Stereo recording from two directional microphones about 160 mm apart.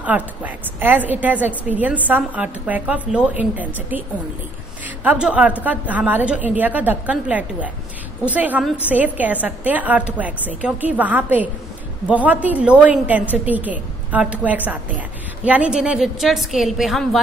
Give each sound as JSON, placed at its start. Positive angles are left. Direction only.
{"t": 0.0, "sound": "a woman's voice", "side_deg": -10}